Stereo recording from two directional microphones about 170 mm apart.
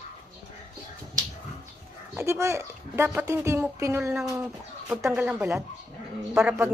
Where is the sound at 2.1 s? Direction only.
15° right (ahead or behind).